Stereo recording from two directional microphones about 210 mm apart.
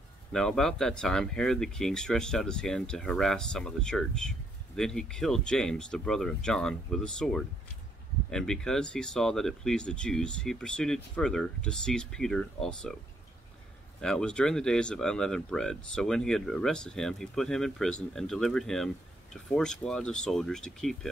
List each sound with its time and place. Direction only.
0.3 s speech: centre (ahead or behind)
14.0 s speech: 5° left (ahead or behind)